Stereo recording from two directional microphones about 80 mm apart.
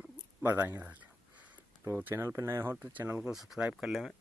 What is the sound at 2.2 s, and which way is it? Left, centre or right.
Speech, right.